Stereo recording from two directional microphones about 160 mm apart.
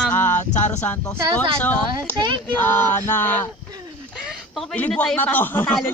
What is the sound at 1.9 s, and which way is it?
Speech, 30° right (ahead or behind).